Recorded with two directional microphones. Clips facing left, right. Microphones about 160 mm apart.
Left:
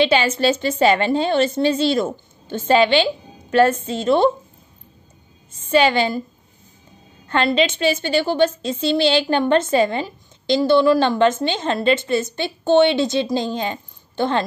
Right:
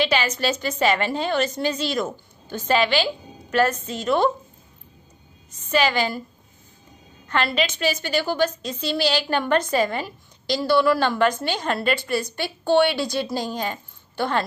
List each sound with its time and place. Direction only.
0.0 s a woman's voice: 30° left (ahead or behind)
5.5 s a woman's voice: 30° left (ahead or behind)
7.2 s a woman's voice: 30° left (ahead or behind)